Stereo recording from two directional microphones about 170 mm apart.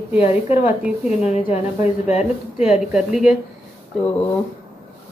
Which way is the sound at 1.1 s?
40° left (ahead or behind).